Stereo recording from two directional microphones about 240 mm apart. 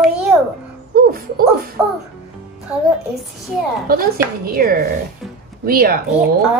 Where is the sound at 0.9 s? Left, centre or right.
Right.